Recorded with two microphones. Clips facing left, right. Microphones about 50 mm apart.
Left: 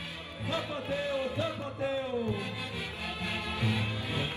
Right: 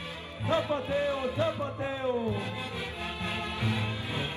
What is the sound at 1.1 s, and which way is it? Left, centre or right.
Music, right.